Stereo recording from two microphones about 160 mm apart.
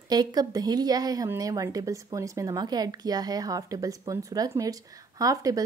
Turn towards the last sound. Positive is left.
turn(degrees=-20)  # may be behind; listen again after turning